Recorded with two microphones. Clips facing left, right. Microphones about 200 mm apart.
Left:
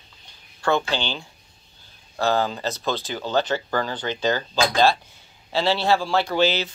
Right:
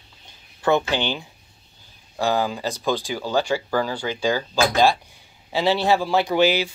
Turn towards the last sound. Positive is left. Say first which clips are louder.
# right 2 dB
turn(degrees=-15)  # may be behind; listen again after turning